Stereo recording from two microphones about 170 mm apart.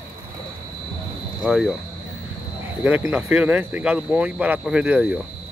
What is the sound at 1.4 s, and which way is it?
Speech, 5° right (ahead or behind).